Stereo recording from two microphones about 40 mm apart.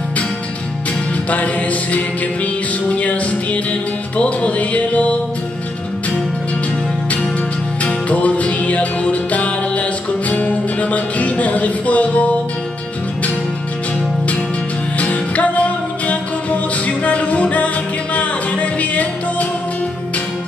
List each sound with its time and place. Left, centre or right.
1.3 s music: left
7.8 s music: left
15.0 s music: left